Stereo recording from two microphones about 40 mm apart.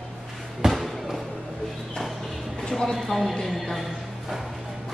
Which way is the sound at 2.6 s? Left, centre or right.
Centre.